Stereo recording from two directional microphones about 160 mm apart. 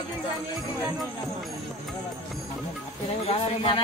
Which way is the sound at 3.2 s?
35° left (ahead or behind).